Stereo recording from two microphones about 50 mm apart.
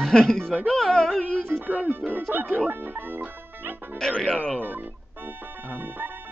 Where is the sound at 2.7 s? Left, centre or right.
Right.